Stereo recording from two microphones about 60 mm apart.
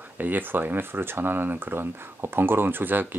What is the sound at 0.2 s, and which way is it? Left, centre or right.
Speech, right.